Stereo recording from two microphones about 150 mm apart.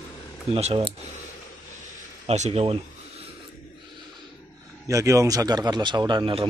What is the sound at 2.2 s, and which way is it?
Speech, 45° right (ahead or behind).